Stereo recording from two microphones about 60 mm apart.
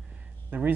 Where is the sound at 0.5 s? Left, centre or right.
Right.